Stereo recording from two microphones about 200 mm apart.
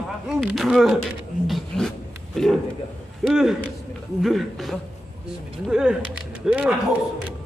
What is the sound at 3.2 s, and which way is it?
Speech, centre (ahead or behind).